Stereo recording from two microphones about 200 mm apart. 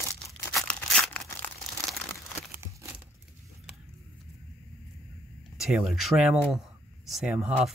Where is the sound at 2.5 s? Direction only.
10° right (ahead or behind).